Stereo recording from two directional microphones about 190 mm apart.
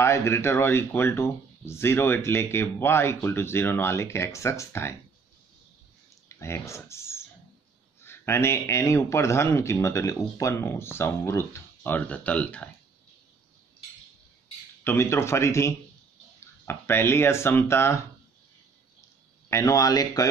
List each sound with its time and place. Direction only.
0.0 s speech: 15° left (ahead or behind)
6.2 s a sound: 15° left (ahead or behind)
8.0 s speech: 15° left (ahead or behind)
14.8 s speech: 10° left (ahead or behind)
19.5 s speech: 15° left (ahead or behind)